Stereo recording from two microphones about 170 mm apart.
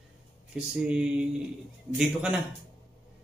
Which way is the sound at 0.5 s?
5° right (ahead or behind).